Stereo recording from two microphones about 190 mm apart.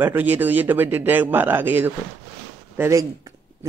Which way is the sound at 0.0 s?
10° right (ahead or behind).